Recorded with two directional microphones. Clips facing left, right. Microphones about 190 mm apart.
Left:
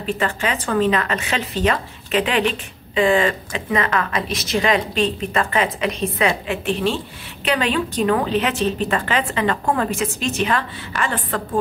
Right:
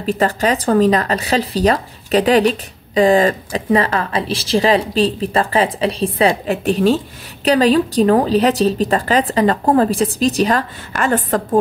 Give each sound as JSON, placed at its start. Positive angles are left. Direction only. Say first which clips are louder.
{"t": 0.0, "sound": "a woman's voice", "louder": "right 6 dB", "side_deg": -40}